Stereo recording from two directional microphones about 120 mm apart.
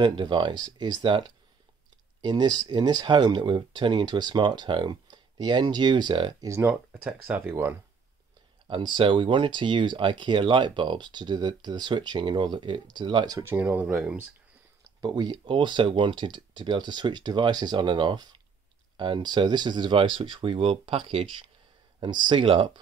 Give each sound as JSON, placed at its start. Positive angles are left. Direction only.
{"t": 0.0, "sound": "speech", "side_deg": -40}
{"t": 6.4, "sound": "speech", "side_deg": -25}
{"t": 8.6, "sound": "speech", "side_deg": -40}
{"t": 13.4, "sound": "speech", "side_deg": -15}
{"t": 15.0, "sound": "speech", "side_deg": -35}